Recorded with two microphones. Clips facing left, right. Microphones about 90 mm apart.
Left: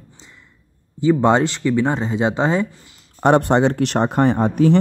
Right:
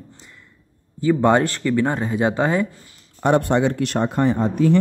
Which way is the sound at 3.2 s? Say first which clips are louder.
Left 3 dB; 80° left.